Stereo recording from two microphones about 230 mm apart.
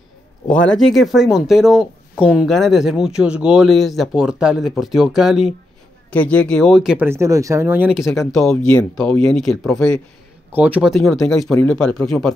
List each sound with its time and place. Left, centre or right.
0.5 s speech: centre